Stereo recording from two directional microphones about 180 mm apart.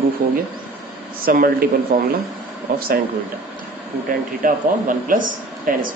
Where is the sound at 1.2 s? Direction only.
55° right (ahead or behind).